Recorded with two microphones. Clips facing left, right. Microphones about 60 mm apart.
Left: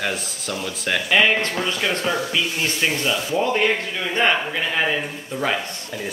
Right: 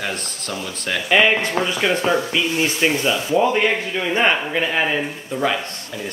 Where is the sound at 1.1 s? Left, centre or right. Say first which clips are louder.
Right 3 dB; centre.